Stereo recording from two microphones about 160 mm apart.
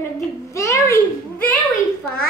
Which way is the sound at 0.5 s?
20° left (ahead or behind).